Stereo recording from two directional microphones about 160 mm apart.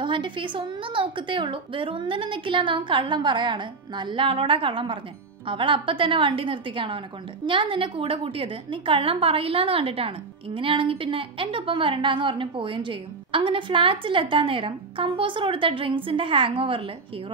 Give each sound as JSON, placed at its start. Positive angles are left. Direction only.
{"t": 0.0, "sound": "a woman's voice", "side_deg": -30}